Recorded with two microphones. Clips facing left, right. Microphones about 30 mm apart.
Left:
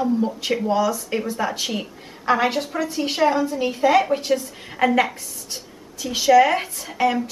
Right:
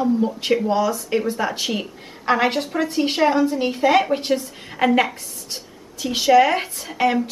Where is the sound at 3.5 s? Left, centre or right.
Right.